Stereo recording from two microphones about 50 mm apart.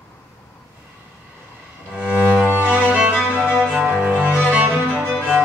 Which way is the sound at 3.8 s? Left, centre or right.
Right.